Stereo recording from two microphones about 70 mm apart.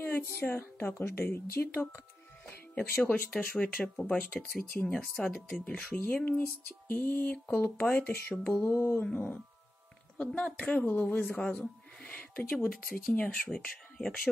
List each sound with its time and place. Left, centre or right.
0.0 s speech: left
3.0 s speech: centre
8.6 s a sound: left
9.0 s speech: centre